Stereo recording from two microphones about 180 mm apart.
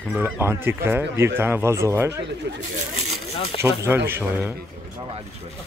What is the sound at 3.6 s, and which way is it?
Speech, 15° right (ahead or behind).